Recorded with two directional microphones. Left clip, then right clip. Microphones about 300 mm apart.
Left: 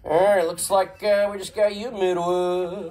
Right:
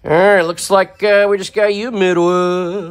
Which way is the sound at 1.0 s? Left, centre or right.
Right.